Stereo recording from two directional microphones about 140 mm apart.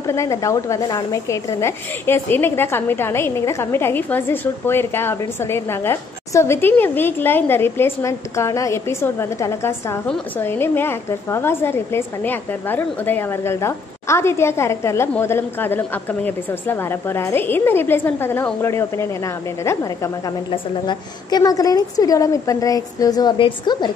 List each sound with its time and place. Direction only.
0.0 s speech: 20° left (ahead or behind)
20.5 s a woman's voice: 35° left (ahead or behind)